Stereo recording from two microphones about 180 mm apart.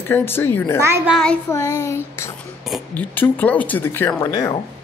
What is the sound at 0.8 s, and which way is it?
Speech, 15° right (ahead or behind).